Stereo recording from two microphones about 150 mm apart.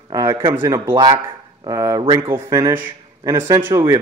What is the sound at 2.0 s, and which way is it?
Speech, 35° right (ahead or behind).